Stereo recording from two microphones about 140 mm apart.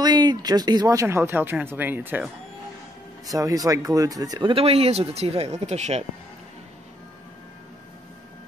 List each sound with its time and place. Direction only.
0.0 s speech: 30° right (ahead or behind); by 2.2 s 15° right (ahead or behind)
3.3 s speech: 25° right (ahead or behind); by 6.0 s 50° right (ahead or behind)